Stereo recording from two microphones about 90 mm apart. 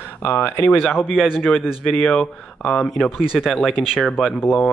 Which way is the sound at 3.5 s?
15° left (ahead or behind).